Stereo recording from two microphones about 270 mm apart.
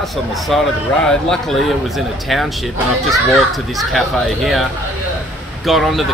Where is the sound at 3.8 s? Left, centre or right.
Centre.